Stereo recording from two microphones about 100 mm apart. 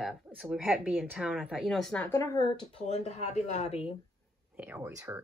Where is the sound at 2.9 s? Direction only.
90° left.